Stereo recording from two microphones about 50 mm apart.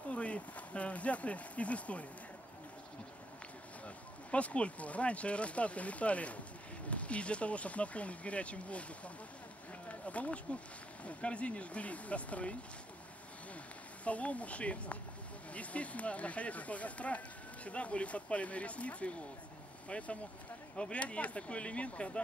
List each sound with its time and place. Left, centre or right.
0.1 s speech: left
3.8 s speech: left
14.0 s speech: left